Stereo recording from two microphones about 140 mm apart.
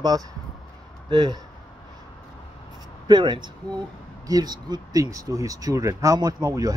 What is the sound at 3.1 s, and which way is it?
Speech, 35° right (ahead or behind).